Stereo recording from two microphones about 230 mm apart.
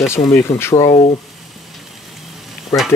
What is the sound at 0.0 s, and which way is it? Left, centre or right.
Stir, centre.